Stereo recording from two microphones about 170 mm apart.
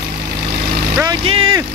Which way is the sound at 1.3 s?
30° right (ahead or behind).